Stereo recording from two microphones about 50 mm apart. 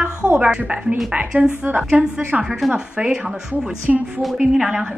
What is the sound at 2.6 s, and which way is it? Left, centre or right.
Speech, centre.